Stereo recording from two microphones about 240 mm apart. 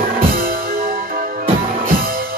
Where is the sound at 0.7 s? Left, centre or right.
Right.